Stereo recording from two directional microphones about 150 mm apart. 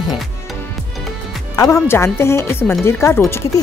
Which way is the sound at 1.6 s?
15° left (ahead or behind).